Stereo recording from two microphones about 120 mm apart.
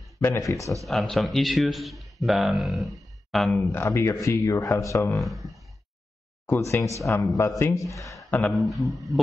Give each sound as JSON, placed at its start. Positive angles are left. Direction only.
{"t": 0.2, "sound": "speech", "side_deg": 25}
{"t": 0.8, "sound": "speech", "side_deg": 0}
{"t": 3.7, "sound": "speech", "side_deg": 20}
{"t": 5.2, "sound": "speech", "side_deg": 0}
{"t": 6.4, "sound": "speech", "side_deg": 20}
{"t": 8.3, "sound": "speech", "side_deg": 15}